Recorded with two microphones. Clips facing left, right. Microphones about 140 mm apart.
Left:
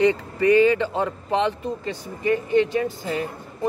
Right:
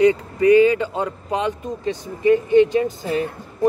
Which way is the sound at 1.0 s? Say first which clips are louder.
Even; 15° right (ahead or behind).